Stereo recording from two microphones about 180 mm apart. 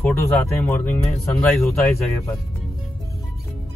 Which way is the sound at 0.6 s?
10° left (ahead or behind).